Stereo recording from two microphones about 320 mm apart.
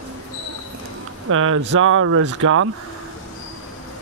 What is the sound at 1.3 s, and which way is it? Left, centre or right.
Speech, right.